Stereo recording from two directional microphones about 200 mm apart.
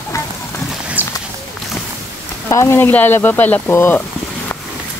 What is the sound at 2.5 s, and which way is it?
Speech, 15° left (ahead or behind).